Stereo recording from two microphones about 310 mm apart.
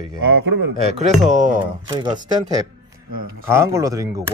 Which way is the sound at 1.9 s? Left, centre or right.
Centre.